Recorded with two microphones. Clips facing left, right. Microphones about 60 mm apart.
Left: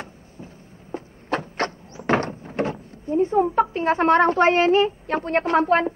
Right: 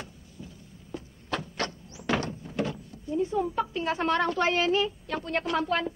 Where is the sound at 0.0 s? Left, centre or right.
Left.